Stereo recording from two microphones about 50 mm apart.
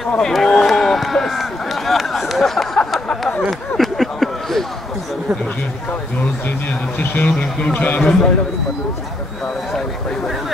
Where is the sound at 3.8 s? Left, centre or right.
Centre.